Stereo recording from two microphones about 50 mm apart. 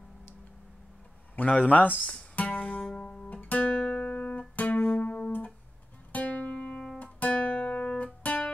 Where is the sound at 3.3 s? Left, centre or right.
Left.